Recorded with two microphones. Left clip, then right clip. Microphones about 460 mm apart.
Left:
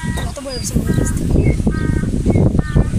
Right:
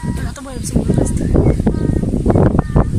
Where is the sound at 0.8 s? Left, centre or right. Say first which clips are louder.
Right 5 dB; right.